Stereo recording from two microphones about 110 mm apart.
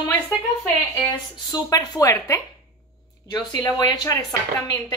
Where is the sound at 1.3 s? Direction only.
40° left (ahead or behind).